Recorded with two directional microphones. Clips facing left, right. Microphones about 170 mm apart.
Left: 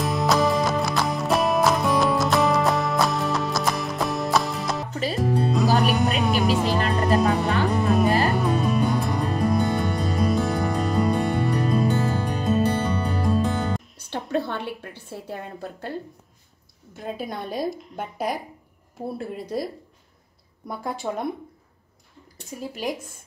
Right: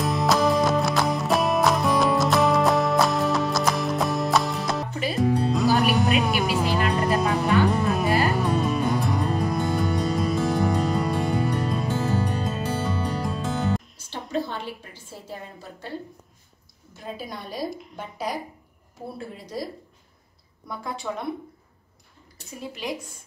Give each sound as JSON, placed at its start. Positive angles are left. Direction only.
{"t": 0.0, "sound": "music", "side_deg": 0}
{"t": 14.0, "sound": "a sound", "side_deg": 60}
{"t": 16.9, "sound": "a woman's voice", "side_deg": 55}
{"t": 21.0, "sound": "speech", "side_deg": 25}